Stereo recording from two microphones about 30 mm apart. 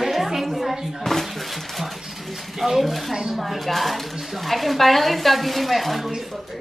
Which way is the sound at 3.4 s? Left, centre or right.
Centre.